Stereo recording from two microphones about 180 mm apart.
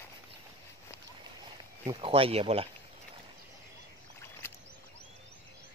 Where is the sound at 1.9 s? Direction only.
30° right (ahead or behind).